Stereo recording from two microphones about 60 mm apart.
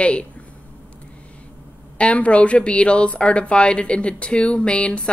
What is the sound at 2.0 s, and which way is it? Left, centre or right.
Speech, left.